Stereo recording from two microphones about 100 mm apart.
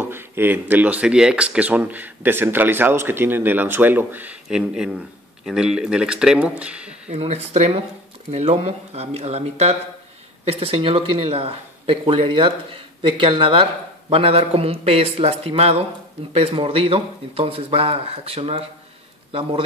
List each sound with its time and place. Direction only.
0.0 s speech: 20° right (ahead or behind)
4.5 s speech: 5° right (ahead or behind)
7.1 s speech: 90° right
10.4 s speech: 75° right (ahead or behind); by 15.8 s 90° right
16.3 s speech: 70° right (ahead or behind)